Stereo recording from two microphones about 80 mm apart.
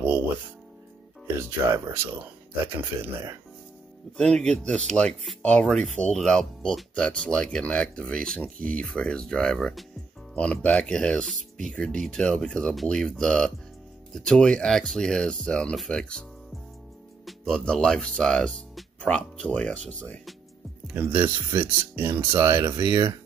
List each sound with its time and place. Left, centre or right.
1.2 s speech: right
4.2 s speech: centre
17.3 s speech: centre
20.8 s speech: centre; by 23.1 s right